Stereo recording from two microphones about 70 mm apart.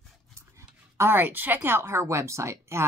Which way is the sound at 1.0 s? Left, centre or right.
Right.